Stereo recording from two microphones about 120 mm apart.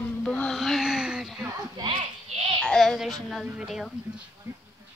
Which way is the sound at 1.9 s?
55° right (ahead or behind).